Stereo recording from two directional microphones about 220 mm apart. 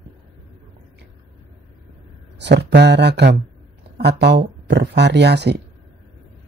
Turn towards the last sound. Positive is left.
turn(degrees=-50)  # may be behind; listen again after turning